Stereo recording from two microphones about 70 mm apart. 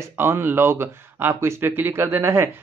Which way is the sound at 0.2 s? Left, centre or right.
Right.